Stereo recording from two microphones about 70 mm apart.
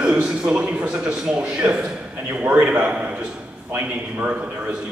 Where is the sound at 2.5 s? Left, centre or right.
Centre.